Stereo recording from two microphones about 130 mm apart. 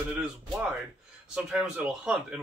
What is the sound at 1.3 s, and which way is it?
Speech, 5° right (ahead or behind).